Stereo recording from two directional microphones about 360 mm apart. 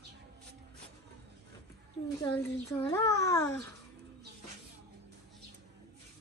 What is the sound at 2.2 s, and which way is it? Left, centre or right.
A child's voice, centre.